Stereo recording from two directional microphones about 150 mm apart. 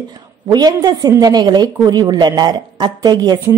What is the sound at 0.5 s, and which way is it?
A woman's voice, 25° right (ahead or behind).